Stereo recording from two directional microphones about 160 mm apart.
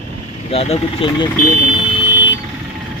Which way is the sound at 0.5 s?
40° left (ahead or behind).